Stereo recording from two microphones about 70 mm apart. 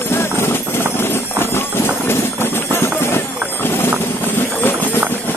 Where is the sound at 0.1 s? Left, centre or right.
Left.